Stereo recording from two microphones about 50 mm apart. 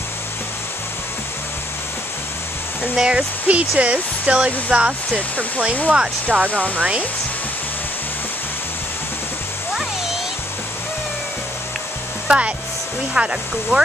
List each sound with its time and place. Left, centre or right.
2.8 s speech: centre
3.4 s speech: right
6.3 s speech: centre
6.8 s speech: right
12.3 s speech: right